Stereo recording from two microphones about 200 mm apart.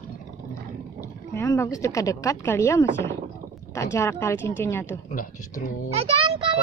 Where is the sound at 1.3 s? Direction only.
15° left (ahead or behind).